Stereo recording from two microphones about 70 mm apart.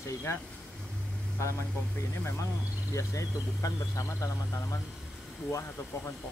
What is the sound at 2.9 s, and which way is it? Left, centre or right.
Speech, left.